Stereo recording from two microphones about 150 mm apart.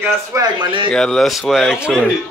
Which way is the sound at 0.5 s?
35° right (ahead or behind).